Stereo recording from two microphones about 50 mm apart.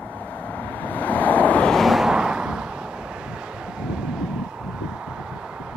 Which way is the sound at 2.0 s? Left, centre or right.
Centre.